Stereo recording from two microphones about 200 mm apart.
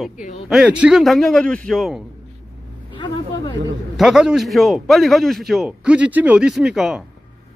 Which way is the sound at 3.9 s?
5° right (ahead or behind).